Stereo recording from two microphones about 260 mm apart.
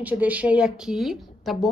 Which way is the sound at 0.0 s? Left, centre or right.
Centre.